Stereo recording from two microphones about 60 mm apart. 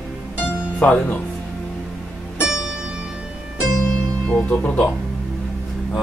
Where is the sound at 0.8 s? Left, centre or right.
Left.